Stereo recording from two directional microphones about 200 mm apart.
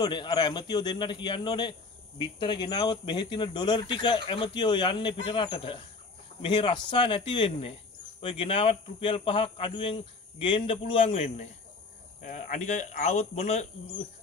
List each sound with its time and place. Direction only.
0.0 s speech: 20° left (ahead or behind)